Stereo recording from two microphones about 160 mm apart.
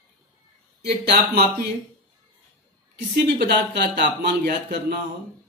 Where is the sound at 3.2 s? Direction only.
90° right.